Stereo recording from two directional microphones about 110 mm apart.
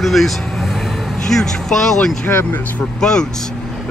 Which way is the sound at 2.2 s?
20° left (ahead or behind).